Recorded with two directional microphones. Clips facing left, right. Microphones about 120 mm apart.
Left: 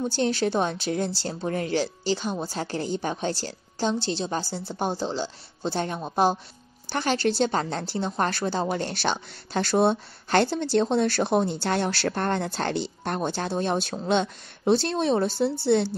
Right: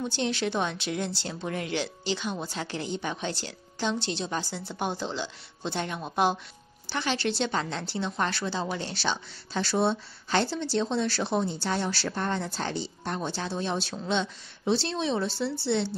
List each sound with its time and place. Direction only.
0.0 s a woman's voice: 40° left (ahead or behind)